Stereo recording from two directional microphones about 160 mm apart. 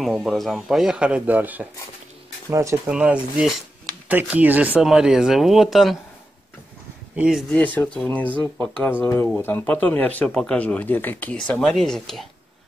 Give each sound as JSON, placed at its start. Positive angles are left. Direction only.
{"t": 0.0, "sound": "speech", "side_deg": 0}
{"t": 2.9, "sound": "speech", "side_deg": -5}
{"t": 7.2, "sound": "speech", "side_deg": -5}
{"t": 7.5, "sound": "speech", "side_deg": 10}